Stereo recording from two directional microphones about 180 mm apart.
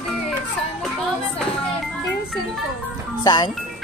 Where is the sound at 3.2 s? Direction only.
25° left (ahead or behind).